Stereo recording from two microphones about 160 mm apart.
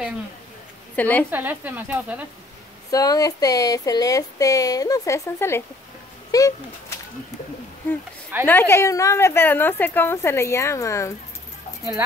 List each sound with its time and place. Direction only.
0.9 s a woman's voice: 10° left (ahead or behind)
1.3 s speech: 10° right (ahead or behind)
2.9 s speech: 20° left (ahead or behind)
8.5 s a woman's voice: 15° left (ahead or behind)